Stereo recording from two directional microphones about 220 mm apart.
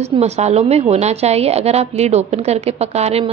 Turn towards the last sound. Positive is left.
turn(degrees=-30)  # may be behind; listen again after turning